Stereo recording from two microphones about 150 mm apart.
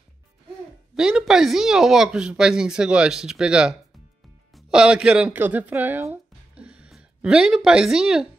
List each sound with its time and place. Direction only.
0.9 s speech: 5° right (ahead or behind)